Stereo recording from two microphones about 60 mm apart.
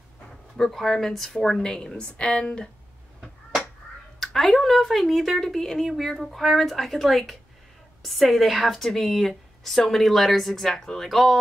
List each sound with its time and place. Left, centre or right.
0.6 s a woman's voice: centre
4.2 s a woman's voice: centre